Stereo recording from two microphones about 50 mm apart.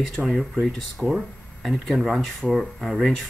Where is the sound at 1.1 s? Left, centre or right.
Centre.